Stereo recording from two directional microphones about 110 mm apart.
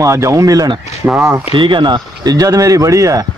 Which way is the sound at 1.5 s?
50° right (ahead or behind).